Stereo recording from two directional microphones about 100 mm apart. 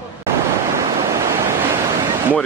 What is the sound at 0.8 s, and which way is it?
Waves, 30° right (ahead or behind).